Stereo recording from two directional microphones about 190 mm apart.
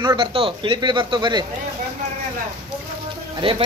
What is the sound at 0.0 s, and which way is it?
Speech, 25° right (ahead or behind).